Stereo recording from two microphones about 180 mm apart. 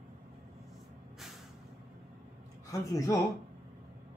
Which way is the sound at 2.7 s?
20° left (ahead or behind).